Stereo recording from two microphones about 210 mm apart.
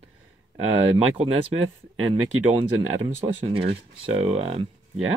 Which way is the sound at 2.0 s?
80° right.